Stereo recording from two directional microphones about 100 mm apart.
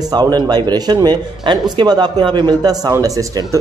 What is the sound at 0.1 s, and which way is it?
A man's voice, 45° right (ahead or behind).